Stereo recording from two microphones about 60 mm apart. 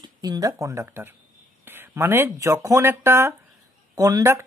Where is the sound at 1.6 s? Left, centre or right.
Right.